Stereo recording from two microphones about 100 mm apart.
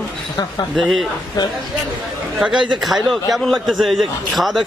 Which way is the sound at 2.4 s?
10° right (ahead or behind).